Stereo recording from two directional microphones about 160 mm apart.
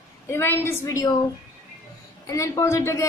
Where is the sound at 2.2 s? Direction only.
20° left (ahead or behind).